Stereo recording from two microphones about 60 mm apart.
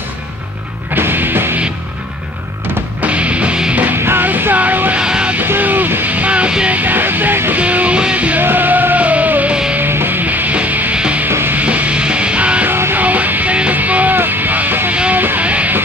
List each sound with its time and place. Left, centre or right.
0.9 s music: right
3.0 s music: right
4.0 s music: right
4.9 s music: centre
5.5 s music: right
6.8 s music: right
7.6 s music: right
9.8 s music: right; by 11.2 s centre
11.2 s music: right
11.6 s music: right
12.6 s music: right
13.0 s music: right